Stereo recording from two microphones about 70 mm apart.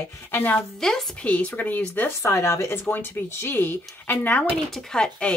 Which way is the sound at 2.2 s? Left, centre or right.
Left.